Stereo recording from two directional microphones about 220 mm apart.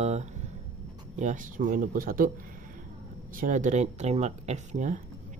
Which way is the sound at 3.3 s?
35° right (ahead or behind).